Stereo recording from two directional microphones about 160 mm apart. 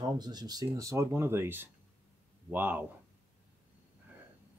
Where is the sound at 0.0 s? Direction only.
25° right (ahead or behind).